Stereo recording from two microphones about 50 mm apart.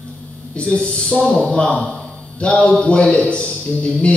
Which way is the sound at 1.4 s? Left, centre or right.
Centre.